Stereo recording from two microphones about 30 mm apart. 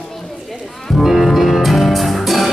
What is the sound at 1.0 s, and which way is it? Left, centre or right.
Music, centre.